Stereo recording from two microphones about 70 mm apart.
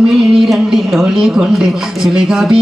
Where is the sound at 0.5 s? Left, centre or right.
Centre.